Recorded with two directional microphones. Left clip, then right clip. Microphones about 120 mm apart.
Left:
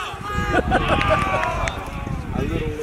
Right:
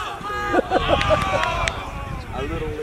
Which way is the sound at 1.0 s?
15° right (ahead or behind).